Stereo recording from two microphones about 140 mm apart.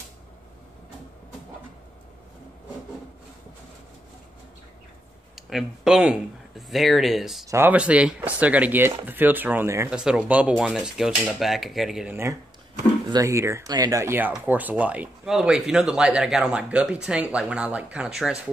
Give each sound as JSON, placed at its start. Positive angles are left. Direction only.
{"t": 5.5, "sound": "speech", "side_deg": -5}
{"t": 7.4, "sound": "speech", "side_deg": -20}
{"t": 7.7, "sound": "speech", "side_deg": -10}
{"t": 9.8, "sound": "speech", "side_deg": -5}
{"t": 13.1, "sound": "speech", "side_deg": -20}